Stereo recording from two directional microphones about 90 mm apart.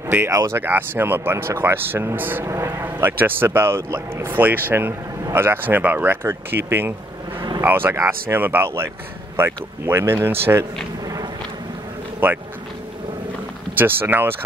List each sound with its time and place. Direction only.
0.3 s speech: 40° right (ahead or behind)
0.6 s speech: 25° right (ahead or behind)
12.2 s speech: 20° right (ahead or behind)
13.7 s speech: 25° right (ahead or behind)